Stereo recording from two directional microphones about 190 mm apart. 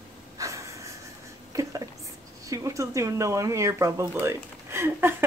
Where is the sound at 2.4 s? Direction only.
15° right (ahead or behind).